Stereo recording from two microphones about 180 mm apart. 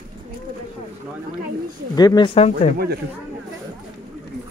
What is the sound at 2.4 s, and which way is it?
Speech, 35° left (ahead or behind).